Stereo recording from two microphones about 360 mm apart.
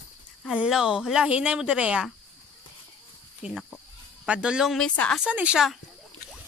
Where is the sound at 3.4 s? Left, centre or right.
Centre.